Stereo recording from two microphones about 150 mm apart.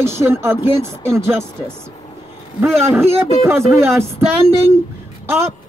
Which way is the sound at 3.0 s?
15° right (ahead or behind).